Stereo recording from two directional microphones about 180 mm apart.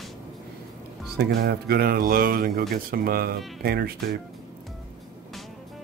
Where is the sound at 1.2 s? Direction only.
60° right (ahead or behind).